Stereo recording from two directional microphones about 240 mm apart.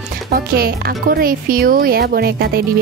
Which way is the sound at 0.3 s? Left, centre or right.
Right.